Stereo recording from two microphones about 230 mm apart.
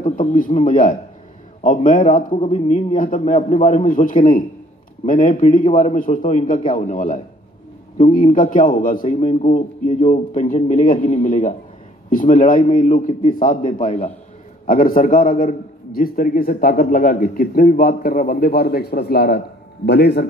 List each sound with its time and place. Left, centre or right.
0.0 s a man's voice: left